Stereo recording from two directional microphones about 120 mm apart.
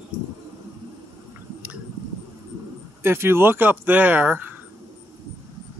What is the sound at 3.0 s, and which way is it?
Speech, 20° right (ahead or behind).